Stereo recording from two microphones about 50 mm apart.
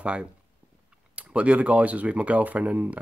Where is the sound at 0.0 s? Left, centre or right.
Right.